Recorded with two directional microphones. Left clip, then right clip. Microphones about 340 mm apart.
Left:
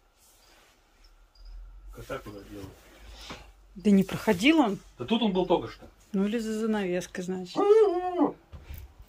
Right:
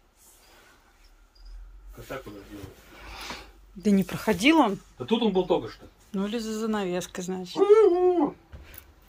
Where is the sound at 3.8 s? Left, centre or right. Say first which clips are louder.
Even; centre.